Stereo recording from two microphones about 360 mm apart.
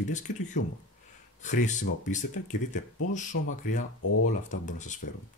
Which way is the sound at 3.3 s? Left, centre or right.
Left.